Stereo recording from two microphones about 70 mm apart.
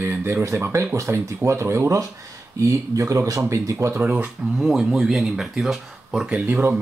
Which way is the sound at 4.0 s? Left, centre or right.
Right.